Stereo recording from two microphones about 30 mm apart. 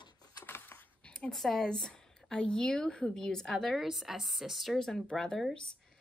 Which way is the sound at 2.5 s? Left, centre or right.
Left.